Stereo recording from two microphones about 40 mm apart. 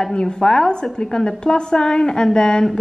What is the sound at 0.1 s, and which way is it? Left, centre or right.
A woman's voice, left.